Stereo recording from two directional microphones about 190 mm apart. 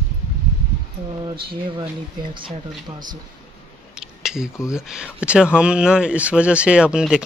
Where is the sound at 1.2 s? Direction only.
25° right (ahead or behind).